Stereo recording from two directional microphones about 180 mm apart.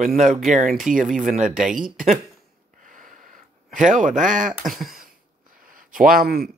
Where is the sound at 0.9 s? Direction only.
45° right (ahead or behind).